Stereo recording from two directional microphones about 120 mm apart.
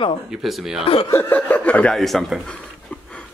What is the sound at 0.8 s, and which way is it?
Speech, 50° left (ahead or behind).